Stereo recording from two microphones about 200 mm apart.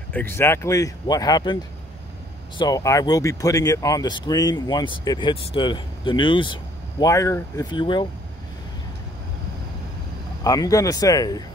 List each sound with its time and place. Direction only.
0.1 s speech: 10° left (ahead or behind)
10.4 s speech: 15° left (ahead or behind)